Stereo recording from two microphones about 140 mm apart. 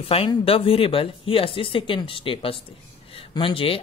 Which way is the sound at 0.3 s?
40° left (ahead or behind).